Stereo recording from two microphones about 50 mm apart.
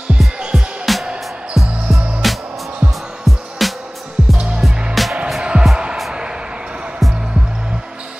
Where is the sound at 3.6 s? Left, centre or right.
Centre.